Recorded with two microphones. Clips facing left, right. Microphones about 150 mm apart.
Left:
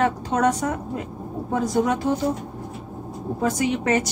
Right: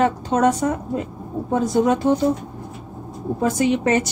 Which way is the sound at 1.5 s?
25° right (ahead or behind).